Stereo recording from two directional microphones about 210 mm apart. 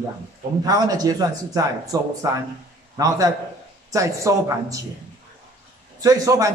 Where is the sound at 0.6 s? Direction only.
15° right (ahead or behind).